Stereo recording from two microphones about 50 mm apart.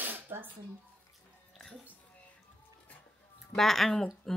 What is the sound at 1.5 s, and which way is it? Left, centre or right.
Music, centre.